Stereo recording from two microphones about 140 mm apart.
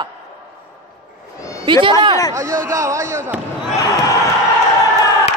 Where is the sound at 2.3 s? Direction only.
20° right (ahead or behind).